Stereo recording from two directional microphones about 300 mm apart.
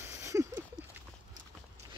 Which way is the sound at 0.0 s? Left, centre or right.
Centre.